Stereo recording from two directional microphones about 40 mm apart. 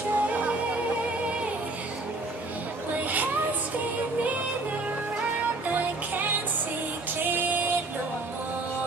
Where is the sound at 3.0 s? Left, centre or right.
Right.